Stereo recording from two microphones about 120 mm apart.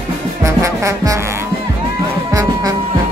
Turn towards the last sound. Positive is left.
turn(degrees=-25)  # may be behind; listen again after turning